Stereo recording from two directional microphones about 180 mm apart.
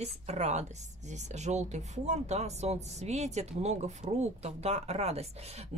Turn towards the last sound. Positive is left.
turn(degrees=-35)  # may be behind; listen again after turning